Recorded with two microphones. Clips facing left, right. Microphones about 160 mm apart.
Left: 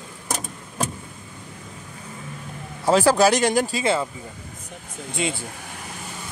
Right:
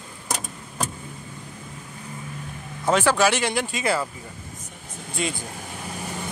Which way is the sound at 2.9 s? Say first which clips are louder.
Left 3 dB; 35° left (ahead or behind).